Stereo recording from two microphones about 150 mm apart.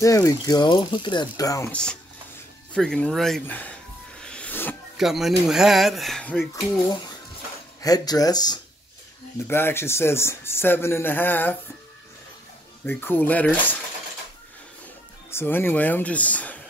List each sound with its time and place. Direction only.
0.0 s speech: 20° left (ahead or behind)
1.7 s speech: 5° left (ahead or behind)
4.2 s music: 5° left (ahead or behind)
4.9 s speech: centre (ahead or behind)
7.8 s speech: 25° left (ahead or behind)
9.5 s speech: 15° left (ahead or behind)
12.8 s speech: 15° left (ahead or behind)
15.3 s speech: 15° left (ahead or behind)